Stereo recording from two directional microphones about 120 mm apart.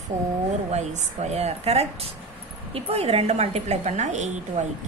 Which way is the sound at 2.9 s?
55° right (ahead or behind).